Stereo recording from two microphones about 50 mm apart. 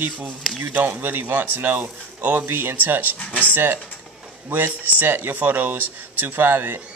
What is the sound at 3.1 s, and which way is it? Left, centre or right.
Speech, left.